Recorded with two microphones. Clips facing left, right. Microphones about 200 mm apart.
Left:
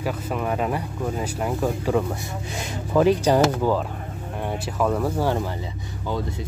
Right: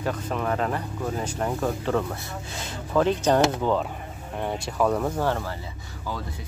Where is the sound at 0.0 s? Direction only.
10° left (ahead or behind).